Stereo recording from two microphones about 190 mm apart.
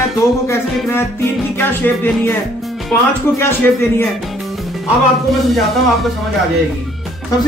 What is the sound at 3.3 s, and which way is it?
Music, 10° left (ahead or behind).